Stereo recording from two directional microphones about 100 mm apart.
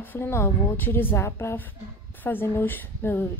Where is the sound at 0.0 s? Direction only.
20° left (ahead or behind).